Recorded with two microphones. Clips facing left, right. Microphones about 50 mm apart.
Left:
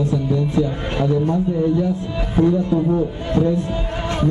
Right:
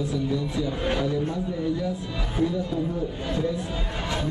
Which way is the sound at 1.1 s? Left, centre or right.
Left.